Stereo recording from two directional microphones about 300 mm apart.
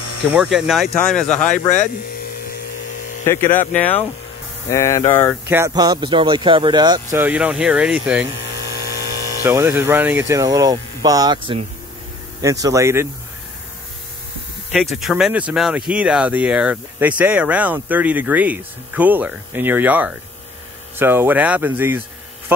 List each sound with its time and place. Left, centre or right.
0.3 s speech: centre
1.5 s speech: left
3.3 s speech: centre
5.5 s speech: centre
9.4 s speech: centre
12.4 s speech: centre
14.7 s speech: centre